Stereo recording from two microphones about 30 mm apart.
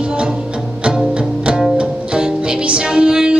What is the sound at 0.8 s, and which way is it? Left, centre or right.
Music, right.